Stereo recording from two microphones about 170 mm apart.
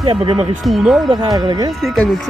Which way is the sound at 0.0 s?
30° right (ahead or behind).